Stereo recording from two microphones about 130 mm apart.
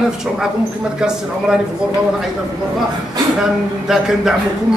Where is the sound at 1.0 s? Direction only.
5° right (ahead or behind).